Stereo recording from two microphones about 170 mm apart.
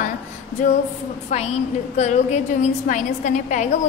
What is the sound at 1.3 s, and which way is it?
A woman's voice, 40° left (ahead or behind).